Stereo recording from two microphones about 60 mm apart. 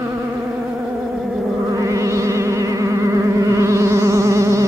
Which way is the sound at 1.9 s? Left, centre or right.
Right.